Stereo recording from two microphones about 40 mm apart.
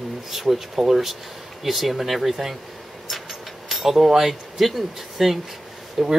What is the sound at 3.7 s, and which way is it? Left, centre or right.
Speech, centre.